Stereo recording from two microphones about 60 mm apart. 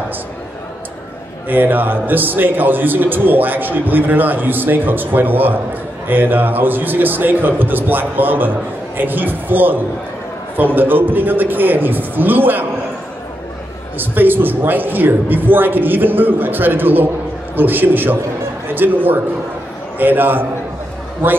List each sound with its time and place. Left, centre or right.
1.5 s a man's voice: right
13.9 s a man's voice: right